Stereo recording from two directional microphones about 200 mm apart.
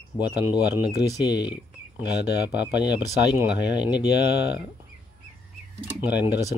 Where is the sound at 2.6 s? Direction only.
20° left (ahead or behind).